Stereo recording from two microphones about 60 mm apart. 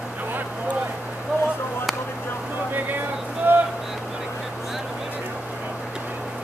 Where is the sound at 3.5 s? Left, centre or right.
Right.